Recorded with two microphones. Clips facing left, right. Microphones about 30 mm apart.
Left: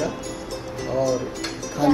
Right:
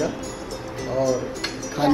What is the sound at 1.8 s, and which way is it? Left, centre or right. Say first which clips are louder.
Speech: left 1 dB; right.